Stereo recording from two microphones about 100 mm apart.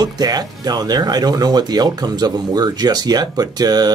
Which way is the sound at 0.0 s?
40° right (ahead or behind).